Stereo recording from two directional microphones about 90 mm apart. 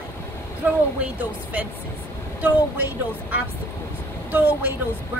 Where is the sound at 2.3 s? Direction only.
20° right (ahead or behind).